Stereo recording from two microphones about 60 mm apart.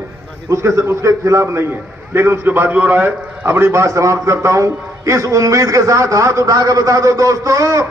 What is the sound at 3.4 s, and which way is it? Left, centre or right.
A man's voice, right.